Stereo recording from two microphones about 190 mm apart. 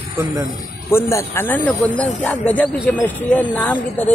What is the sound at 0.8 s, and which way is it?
Speech, 15° left (ahead or behind).